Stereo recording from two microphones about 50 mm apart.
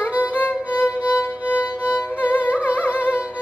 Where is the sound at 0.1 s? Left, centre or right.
Right.